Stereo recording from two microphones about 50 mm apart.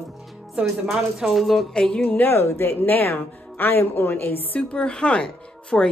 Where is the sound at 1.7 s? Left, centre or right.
Centre.